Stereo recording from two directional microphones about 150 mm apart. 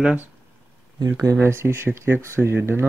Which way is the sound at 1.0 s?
20° right (ahead or behind).